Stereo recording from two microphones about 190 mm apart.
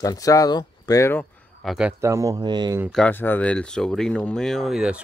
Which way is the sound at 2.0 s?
15° right (ahead or behind).